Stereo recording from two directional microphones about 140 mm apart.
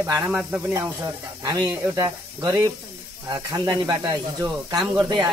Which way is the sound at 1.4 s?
30° right (ahead or behind).